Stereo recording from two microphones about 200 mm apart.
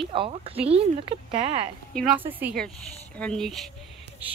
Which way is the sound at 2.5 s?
5° left (ahead or behind).